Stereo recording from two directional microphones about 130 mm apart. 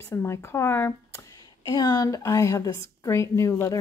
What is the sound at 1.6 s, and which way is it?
A woman's voice, 30° left (ahead or behind).